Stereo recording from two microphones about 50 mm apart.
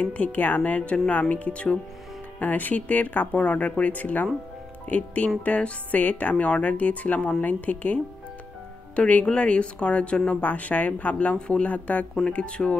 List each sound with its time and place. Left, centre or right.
0.0 s speech: left